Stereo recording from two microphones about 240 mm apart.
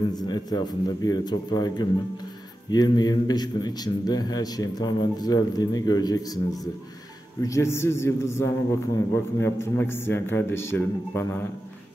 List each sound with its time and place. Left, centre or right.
0.1 s a man's voice: centre